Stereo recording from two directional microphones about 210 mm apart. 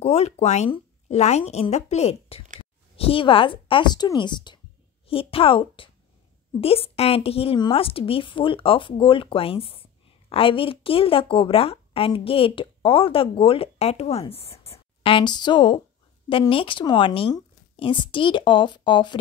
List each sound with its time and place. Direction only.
0.0 s a woman's voice: 30° left (ahead or behind)